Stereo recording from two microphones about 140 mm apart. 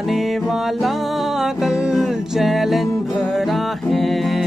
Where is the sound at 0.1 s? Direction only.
Centre (ahead or behind).